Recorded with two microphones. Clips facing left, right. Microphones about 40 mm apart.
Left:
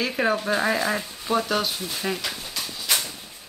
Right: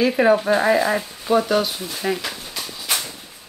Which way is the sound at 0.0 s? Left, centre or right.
Centre.